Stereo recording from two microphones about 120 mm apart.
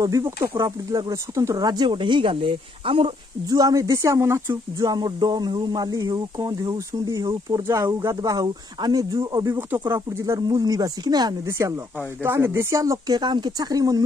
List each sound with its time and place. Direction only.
0.0 s speech: 30° right (ahead or behind); by 3.1 s 45° right (ahead or behind)
3.4 s speech: 30° right (ahead or behind)
7.5 s speech: 25° right (ahead or behind)
11.4 s speech: 25° right (ahead or behind)